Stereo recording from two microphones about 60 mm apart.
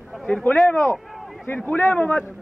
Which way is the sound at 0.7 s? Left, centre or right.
Left.